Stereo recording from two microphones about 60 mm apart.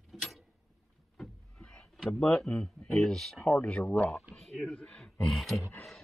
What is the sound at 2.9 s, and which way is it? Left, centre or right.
Speech, centre.